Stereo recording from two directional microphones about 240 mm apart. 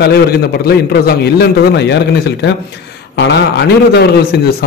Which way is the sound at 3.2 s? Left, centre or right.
Left.